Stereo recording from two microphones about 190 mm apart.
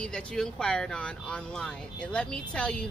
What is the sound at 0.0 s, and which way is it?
A woman's voice, 5° left (ahead or behind).